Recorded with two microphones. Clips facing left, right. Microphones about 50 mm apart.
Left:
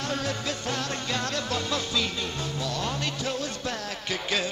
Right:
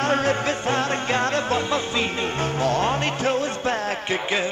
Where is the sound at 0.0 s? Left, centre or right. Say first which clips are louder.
Right 9 dB; right.